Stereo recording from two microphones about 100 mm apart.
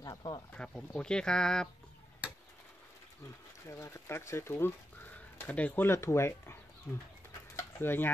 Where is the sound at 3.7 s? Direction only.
30° left (ahead or behind).